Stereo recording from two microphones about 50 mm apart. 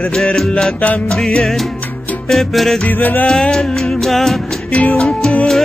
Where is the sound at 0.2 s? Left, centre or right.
Centre.